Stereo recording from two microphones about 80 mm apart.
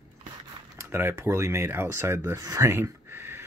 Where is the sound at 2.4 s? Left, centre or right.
Right.